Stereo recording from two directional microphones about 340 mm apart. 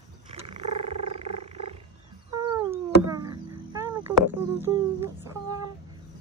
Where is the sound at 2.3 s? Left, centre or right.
Centre.